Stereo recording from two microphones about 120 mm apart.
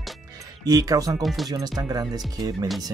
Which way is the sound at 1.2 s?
Centre (ahead or behind).